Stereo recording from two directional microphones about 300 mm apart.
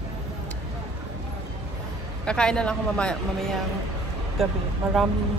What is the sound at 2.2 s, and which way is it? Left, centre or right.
A man's voice, centre.